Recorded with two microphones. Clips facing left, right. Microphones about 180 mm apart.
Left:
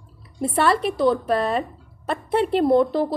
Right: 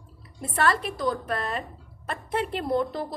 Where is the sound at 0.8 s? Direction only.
65° left (ahead or behind).